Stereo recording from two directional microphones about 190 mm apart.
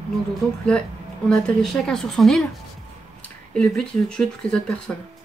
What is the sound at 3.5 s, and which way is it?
Speech, 5° left (ahead or behind).